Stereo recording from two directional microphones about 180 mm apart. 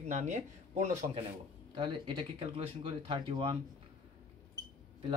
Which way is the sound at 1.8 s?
25° right (ahead or behind).